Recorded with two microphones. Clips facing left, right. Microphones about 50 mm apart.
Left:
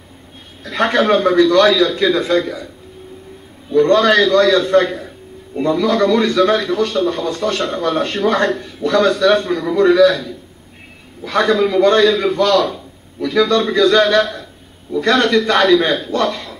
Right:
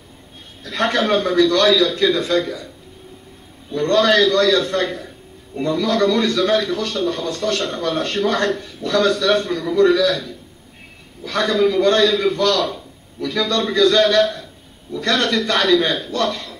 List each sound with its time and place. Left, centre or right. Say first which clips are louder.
0.7 s a man's voice: left 4 dB; left
3.9 s a man's voice: left 1 dB; left